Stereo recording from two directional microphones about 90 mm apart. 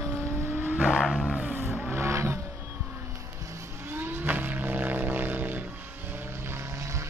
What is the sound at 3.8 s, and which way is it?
Music, 25° right (ahead or behind).